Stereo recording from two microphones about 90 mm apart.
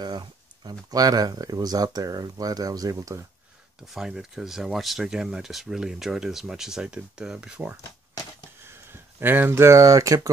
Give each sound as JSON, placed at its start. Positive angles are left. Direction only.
{"t": 0.0, "sound": "speech", "side_deg": -50}
{"t": 3.8, "sound": "speech", "side_deg": -5}
{"t": 9.2, "sound": "speech", "side_deg": -20}